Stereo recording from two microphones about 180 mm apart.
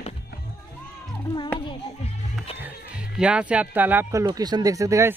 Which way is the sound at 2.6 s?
5° right (ahead or behind).